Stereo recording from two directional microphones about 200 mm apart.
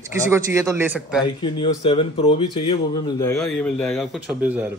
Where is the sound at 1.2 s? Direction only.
25° left (ahead or behind).